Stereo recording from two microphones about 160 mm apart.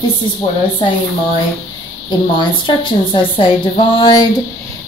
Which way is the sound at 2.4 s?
30° left (ahead or behind).